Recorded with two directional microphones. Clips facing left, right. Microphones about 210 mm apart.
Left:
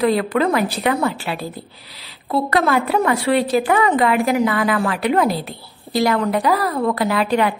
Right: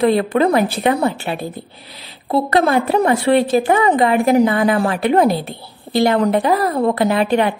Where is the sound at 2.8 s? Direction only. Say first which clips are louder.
Right 3 dB; 30° right (ahead or behind).